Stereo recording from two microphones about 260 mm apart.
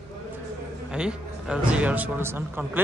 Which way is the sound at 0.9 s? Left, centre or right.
Centre.